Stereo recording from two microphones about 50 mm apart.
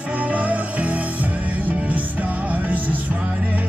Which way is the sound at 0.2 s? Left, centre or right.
Right.